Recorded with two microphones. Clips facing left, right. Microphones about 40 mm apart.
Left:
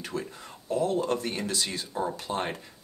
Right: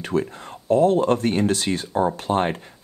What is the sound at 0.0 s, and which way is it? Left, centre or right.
Speech, right.